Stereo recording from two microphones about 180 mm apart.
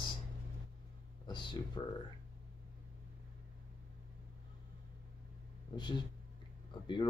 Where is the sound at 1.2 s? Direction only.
25° left (ahead or behind).